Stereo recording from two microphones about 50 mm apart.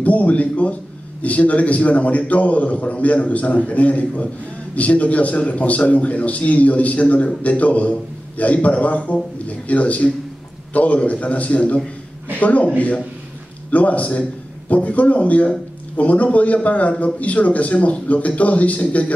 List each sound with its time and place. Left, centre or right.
0.0 s a man's voice: left